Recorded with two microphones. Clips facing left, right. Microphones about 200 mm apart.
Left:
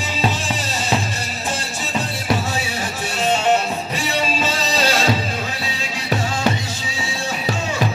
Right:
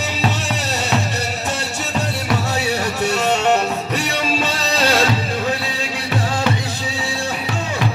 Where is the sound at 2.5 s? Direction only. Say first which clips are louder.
Right 4 dB; 65° right (ahead or behind).